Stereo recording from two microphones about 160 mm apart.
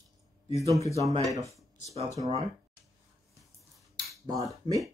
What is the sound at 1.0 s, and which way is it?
Speech, 20° right (ahead or behind).